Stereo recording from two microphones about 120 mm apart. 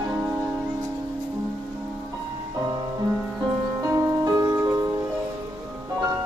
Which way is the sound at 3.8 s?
25° right (ahead or behind).